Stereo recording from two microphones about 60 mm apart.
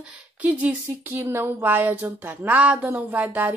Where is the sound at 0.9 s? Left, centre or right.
Right.